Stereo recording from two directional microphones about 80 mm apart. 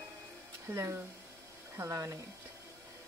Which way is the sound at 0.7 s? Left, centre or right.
Right.